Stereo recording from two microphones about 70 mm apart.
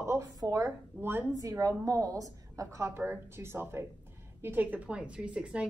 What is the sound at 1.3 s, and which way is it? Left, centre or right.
A woman's voice, right.